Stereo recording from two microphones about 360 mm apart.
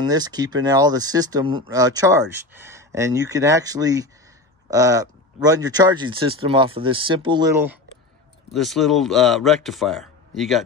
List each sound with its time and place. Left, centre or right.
0.1 s speech: centre